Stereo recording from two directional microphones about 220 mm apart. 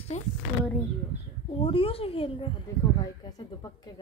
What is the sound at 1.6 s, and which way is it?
A child's voice, 25° left (ahead or behind).